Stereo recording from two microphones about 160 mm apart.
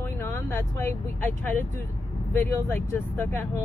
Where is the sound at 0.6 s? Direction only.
15° left (ahead or behind).